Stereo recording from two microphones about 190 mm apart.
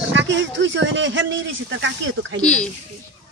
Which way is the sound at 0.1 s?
75° right (ahead or behind).